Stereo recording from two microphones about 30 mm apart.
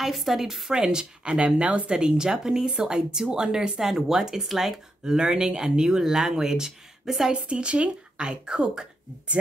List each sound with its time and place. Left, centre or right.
0.0 s a woman's voice: centre
0.7 s a woman's voice: right
5.0 s speech: right
7.4 s a woman's voice: right